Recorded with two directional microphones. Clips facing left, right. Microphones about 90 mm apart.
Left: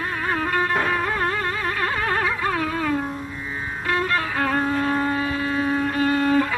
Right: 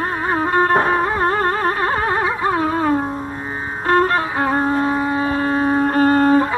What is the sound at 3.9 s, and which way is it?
Music, 40° right (ahead or behind).